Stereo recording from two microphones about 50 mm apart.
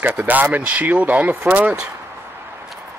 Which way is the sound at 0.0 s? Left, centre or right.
Right.